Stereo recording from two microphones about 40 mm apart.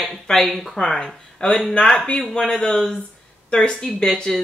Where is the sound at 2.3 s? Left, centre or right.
Centre.